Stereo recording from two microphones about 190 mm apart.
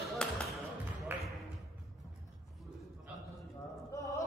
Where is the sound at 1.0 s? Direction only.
Centre (ahead or behind).